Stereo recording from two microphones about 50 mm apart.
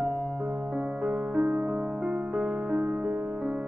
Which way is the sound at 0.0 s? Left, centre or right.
Right.